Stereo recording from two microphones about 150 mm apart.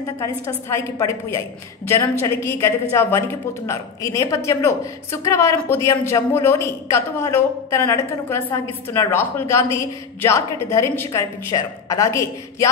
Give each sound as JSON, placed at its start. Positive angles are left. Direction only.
{"t": 0.0, "sound": "a woman's voice", "side_deg": 20}